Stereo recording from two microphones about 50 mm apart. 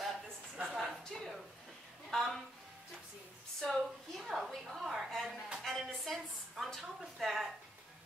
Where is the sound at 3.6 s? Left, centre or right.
Centre.